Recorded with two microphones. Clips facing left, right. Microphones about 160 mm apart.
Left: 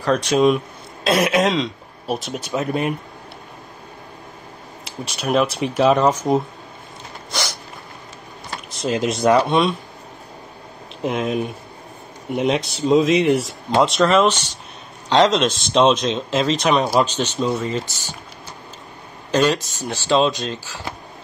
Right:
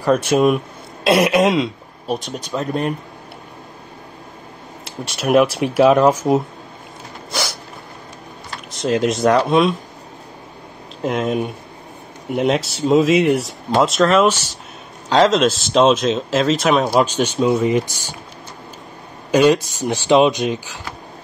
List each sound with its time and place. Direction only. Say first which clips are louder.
0.0 s speech: right 2 dB; 5° right (ahead or behind)
4.8 s speech: right 4 dB; centre (ahead or behind)
8.7 s speech: right 3 dB; centre (ahead or behind)
11.0 s speech: right 2 dB; centre (ahead or behind)
19.3 s speech: right 5 dB; 10° right (ahead or behind)